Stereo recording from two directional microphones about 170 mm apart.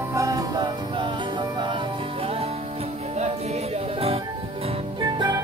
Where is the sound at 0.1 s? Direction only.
20° right (ahead or behind).